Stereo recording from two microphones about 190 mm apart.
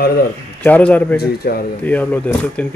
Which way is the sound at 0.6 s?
10° left (ahead or behind).